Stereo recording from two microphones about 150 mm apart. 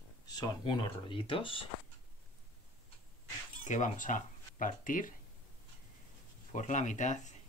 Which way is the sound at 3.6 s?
55° left (ahead or behind).